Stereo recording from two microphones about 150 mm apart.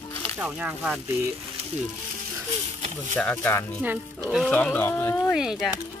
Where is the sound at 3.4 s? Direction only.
15° left (ahead or behind).